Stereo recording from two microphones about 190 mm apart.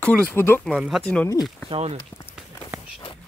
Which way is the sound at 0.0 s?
5° left (ahead or behind).